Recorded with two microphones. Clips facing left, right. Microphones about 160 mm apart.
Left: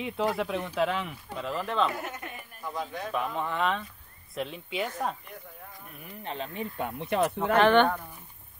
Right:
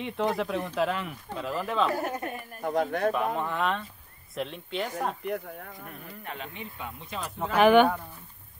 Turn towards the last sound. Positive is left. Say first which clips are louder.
# right 2 dB
turn(degrees=-10)  # may be behind; listen again after turning